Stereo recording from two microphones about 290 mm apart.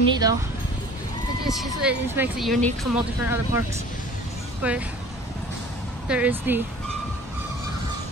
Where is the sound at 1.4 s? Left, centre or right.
Centre.